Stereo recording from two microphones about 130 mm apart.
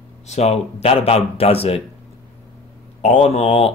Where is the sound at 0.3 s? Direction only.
55° left (ahead or behind).